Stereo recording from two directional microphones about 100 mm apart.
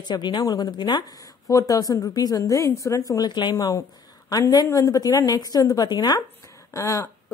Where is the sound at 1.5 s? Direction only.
35° left (ahead or behind).